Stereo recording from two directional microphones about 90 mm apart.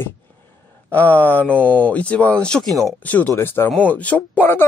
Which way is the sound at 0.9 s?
20° left (ahead or behind).